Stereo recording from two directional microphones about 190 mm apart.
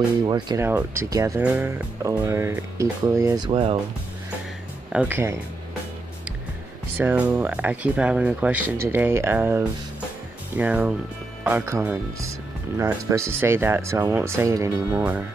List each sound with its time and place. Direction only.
0.2 s speech: 20° right (ahead or behind)
4.9 s speech: 10° right (ahead or behind)
7.0 s speech: 10° right (ahead or behind)